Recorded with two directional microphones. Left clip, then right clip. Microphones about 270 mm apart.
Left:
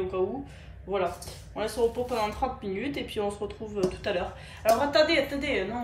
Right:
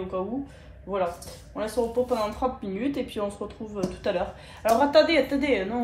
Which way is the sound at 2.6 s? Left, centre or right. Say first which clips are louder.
Right 3 dB; centre.